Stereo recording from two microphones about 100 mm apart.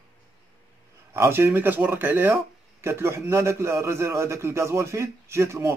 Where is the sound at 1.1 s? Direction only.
25° right (ahead or behind).